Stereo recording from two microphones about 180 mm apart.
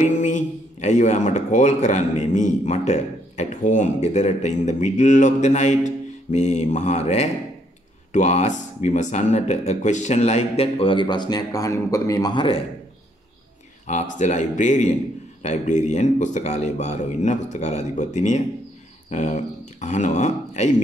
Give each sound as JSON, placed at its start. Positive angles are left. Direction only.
{"t": 0.0, "sound": "speech", "side_deg": 40}
{"t": 13.8, "sound": "speech", "side_deg": 40}